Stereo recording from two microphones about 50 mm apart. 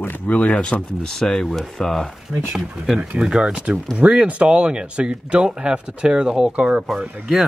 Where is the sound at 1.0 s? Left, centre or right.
Centre.